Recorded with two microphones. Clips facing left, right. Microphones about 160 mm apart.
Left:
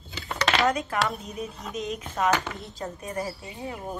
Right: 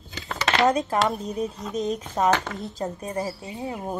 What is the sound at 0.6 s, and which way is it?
Speech, 30° right (ahead or behind).